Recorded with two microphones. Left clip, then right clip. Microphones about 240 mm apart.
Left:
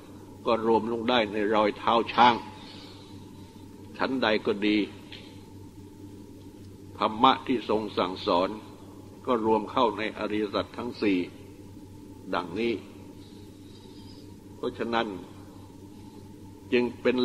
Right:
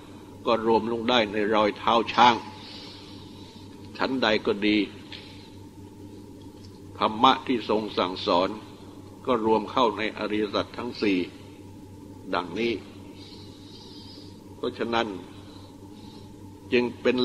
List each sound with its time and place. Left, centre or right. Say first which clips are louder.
0.5 s a man's voice: right 2 dB; left
3.9 s a man's voice: right 2 dB; left
7.0 s a man's voice: right 2 dB; left
12.3 s a man's voice: right 2 dB; left
14.6 s a man's voice: right 2 dB; left
16.7 s a man's voice: right 2 dB; left